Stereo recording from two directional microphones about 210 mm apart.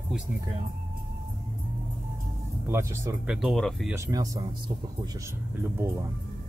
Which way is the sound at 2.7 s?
10° right (ahead or behind).